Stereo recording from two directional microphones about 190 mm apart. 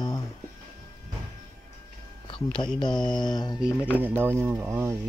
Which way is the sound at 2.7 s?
25° left (ahead or behind).